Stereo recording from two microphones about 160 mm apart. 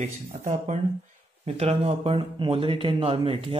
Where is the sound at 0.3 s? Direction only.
45° right (ahead or behind).